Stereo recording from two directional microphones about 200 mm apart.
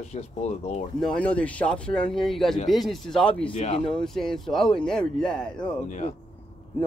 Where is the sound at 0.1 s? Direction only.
35° left (ahead or behind).